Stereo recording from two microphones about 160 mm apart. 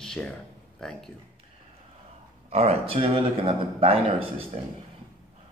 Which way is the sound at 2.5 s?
40° right (ahead or behind).